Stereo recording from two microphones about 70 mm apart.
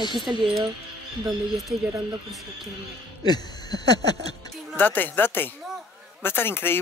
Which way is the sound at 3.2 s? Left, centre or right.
Left.